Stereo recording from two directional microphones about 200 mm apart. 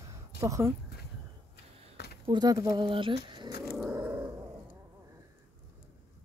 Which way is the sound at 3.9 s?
10° right (ahead or behind).